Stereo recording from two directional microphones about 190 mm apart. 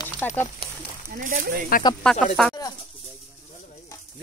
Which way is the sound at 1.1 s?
45° right (ahead or behind).